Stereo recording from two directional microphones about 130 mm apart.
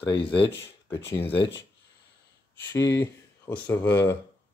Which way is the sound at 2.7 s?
20° left (ahead or behind).